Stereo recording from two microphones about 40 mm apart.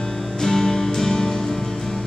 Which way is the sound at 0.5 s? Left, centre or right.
Centre.